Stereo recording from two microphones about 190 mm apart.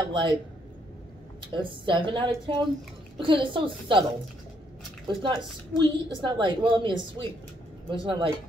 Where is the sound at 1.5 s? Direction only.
25° right (ahead or behind).